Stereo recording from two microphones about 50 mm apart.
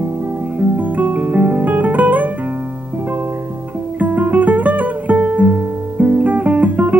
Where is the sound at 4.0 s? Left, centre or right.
Right.